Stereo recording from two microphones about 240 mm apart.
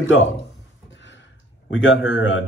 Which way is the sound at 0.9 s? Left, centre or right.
Left.